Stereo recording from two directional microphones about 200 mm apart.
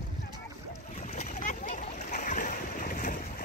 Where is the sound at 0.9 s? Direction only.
40° left (ahead or behind).